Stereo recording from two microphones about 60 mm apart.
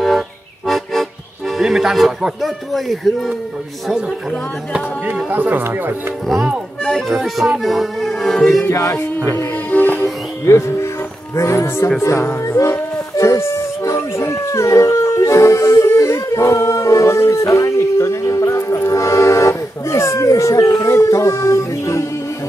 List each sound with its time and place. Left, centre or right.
0.7 s music: centre
1.6 s speech: centre
5.3 s speech: right
6.8 s speech: centre
8.6 s speech: left
9.7 s music: left
10.4 s speech: left
15.8 s music: left